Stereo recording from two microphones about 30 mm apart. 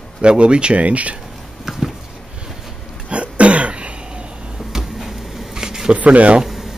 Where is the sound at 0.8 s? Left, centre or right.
Right.